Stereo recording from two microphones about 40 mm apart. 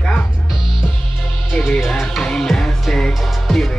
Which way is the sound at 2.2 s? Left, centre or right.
Centre.